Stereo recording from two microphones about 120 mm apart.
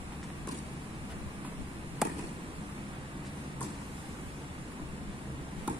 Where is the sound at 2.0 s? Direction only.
5° right (ahead or behind).